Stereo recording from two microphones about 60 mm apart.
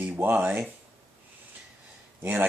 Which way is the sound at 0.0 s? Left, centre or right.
Right.